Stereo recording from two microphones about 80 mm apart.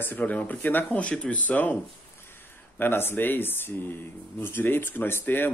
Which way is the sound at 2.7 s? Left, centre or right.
Left.